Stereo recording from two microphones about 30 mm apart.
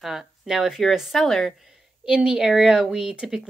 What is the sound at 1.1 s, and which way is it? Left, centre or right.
Speech, centre.